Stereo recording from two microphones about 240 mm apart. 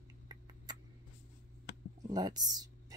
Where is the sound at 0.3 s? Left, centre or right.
Centre.